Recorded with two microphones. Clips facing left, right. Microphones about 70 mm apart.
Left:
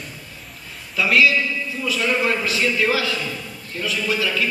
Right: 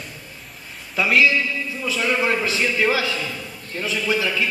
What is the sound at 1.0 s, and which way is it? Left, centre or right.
Speech, centre.